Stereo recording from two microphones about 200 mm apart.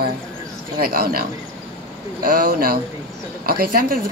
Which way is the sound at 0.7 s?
50° right (ahead or behind).